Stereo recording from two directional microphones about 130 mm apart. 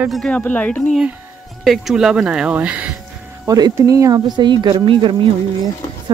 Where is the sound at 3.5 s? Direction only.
30° right (ahead or behind).